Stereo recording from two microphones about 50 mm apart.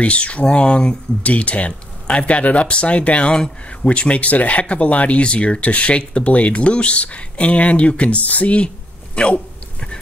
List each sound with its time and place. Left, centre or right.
0.0 s speech: left
3.3 s speech: centre
3.8 s speech: left
9.1 s hiccup: left